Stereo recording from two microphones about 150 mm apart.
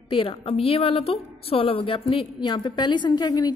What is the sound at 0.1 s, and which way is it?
A woman's voice, 35° left (ahead or behind).